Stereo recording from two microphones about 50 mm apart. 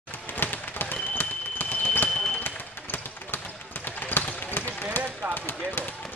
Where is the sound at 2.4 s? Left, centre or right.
Left.